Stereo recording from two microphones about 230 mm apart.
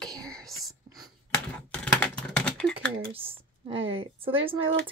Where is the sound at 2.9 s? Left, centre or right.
Right.